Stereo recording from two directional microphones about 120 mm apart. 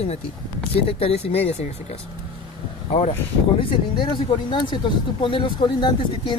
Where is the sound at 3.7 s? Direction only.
40° left (ahead or behind).